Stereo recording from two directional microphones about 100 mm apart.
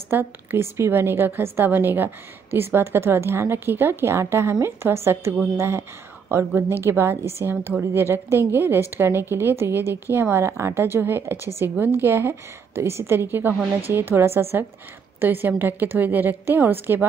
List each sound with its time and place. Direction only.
0.1 s a woman's voice: 20° right (ahead or behind)